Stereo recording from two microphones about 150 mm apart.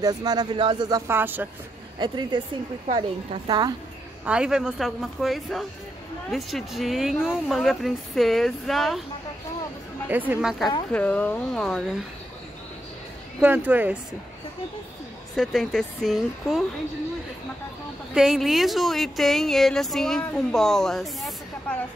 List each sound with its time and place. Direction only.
0.0 s speech: 25° right (ahead or behind)
2.0 s a woman's voice: 30° right (ahead or behind)
4.2 s speech: 5° right (ahead or behind)
10.0 s a woman's voice: 10° right (ahead or behind)
10.9 s speech: 10° left (ahead or behind)
13.4 s a woman's voice: 10° right (ahead or behind)
15.3 s speech: centre (ahead or behind)
18.1 s speech: 5° right (ahead or behind)